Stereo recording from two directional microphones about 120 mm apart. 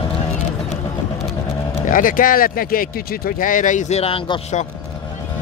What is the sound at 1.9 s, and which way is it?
Speech, 90° left.